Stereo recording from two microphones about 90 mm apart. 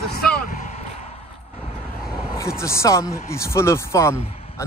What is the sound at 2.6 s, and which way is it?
Speech, 35° left (ahead or behind).